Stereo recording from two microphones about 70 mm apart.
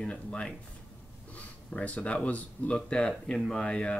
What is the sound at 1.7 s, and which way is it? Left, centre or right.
Speech, centre.